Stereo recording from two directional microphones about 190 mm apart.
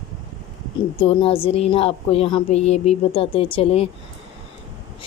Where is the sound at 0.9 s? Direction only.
30° left (ahead or behind).